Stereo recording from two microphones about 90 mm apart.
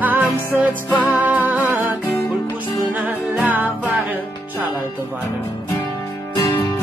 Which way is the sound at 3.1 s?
20° right (ahead or behind).